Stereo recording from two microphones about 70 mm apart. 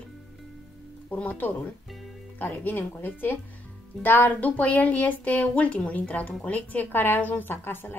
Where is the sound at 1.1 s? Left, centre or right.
Left.